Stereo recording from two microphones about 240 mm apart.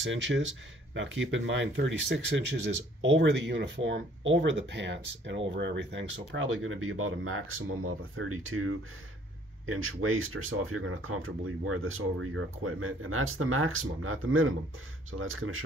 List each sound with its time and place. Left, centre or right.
0.0 s speech: right